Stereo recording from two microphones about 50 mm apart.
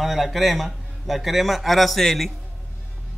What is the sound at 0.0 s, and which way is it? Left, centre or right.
A man's voice, centre.